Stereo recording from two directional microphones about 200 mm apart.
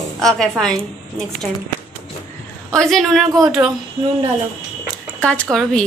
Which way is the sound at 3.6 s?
10° right (ahead or behind).